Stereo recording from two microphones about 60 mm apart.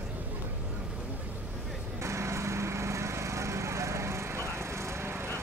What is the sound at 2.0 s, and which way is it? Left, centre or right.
Lawn mower, right.